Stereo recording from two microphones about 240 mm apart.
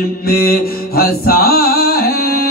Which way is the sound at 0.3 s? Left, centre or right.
Left.